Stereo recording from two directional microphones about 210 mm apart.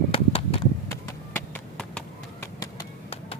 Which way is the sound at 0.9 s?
10° left (ahead or behind).